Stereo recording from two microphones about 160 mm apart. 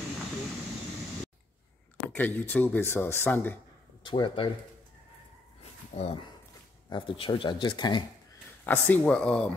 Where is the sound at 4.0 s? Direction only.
30° left (ahead or behind).